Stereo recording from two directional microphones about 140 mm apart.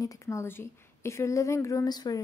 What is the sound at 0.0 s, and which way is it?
Speech, 25° left (ahead or behind).